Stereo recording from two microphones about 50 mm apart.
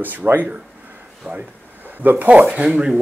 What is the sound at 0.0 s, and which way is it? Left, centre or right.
Speech, right.